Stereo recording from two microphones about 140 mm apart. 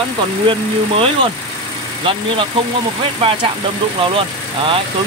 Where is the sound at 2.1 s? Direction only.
40° right (ahead or behind).